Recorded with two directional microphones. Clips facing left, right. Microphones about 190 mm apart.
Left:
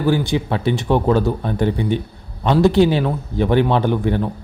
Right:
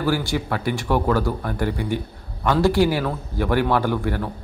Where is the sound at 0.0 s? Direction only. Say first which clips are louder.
Left 4 dB; 20° left (ahead or behind).